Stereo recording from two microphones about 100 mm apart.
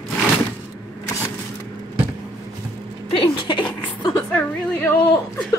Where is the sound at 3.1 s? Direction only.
60° left (ahead or behind).